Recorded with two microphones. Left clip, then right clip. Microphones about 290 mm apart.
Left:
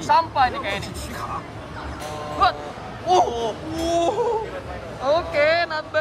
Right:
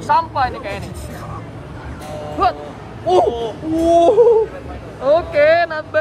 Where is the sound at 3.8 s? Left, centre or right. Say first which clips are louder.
Right 10 dB; left.